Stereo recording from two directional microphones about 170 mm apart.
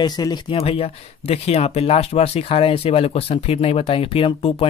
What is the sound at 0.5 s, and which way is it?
Speech, 35° left (ahead or behind).